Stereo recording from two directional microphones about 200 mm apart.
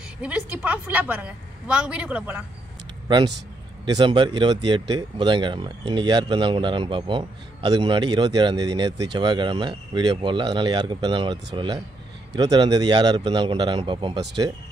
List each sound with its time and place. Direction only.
0.2 s a woman's voice: 5° right (ahead or behind)
3.8 s speech: 20° right (ahead or behind)